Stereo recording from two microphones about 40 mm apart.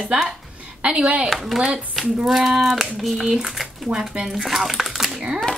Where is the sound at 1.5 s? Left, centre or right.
Right.